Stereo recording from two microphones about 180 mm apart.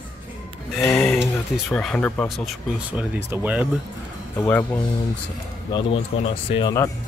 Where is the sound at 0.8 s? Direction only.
10° left (ahead or behind); by 3.6 s 10° right (ahead or behind).